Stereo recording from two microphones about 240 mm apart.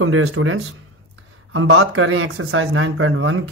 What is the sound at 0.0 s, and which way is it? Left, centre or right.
A man's voice, right.